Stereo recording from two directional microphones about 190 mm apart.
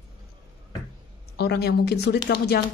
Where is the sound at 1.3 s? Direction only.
60° left (ahead or behind).